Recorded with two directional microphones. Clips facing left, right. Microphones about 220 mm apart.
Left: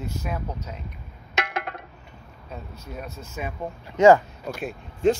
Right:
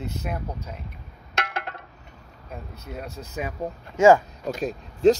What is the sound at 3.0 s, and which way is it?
Speech, 35° right (ahead or behind).